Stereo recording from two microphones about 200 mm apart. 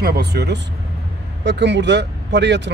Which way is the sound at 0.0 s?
55° right (ahead or behind).